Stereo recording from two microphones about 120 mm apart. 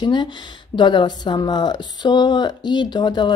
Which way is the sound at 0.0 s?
40° left (ahead or behind).